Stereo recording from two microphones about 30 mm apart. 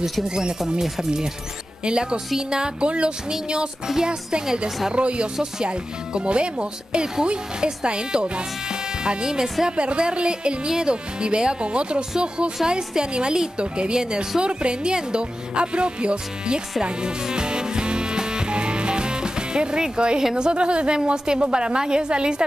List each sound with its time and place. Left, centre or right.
0.3 s a woman's voice: right
1.9 s speech: right
3.8 s a woman's voice: centre
4.9 s speech: right
9.7 s a woman's voice: right
16.8 s music: right
20.5 s speech: right